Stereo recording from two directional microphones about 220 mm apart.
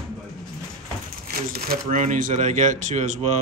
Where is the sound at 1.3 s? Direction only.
40° right (ahead or behind).